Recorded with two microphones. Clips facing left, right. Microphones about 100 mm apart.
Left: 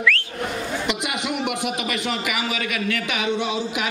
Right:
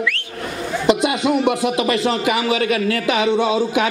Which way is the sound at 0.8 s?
30° right (ahead or behind).